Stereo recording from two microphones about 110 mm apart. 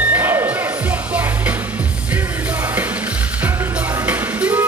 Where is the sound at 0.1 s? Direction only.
20° right (ahead or behind).